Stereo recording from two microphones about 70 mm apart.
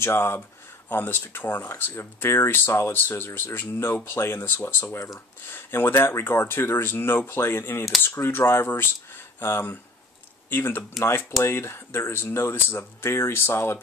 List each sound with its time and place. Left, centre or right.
0.0 s speech: left